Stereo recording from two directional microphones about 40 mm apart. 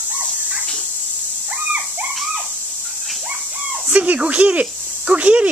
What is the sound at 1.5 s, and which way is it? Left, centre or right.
Dog, right.